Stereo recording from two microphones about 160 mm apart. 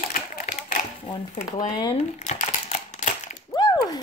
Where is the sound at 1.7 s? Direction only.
30° left (ahead or behind).